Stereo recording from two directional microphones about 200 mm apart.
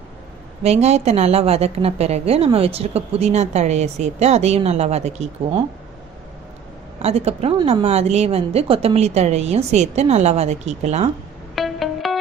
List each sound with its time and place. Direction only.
0.7 s a woman's voice: 35° right (ahead or behind)
7.0 s a woman's voice: 30° right (ahead or behind)
11.5 s music: centre (ahead or behind)